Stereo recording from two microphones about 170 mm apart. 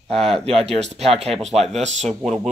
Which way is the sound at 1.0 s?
40° right (ahead or behind).